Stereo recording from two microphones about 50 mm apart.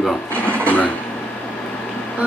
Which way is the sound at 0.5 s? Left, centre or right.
Left.